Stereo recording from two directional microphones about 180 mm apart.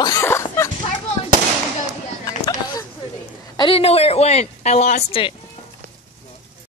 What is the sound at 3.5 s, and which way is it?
Speech, 30° left (ahead or behind).